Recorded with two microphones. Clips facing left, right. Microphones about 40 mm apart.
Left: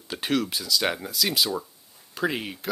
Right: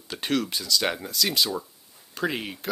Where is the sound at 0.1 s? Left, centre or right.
Centre.